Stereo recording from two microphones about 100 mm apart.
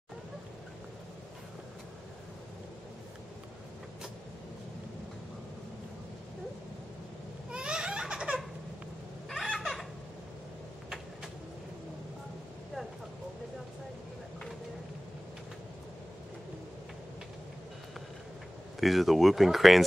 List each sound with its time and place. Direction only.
7.5 s baby laughter: 10° right (ahead or behind)
9.3 s a sound: 5° left (ahead or behind)
18.8 s speech: centre (ahead or behind)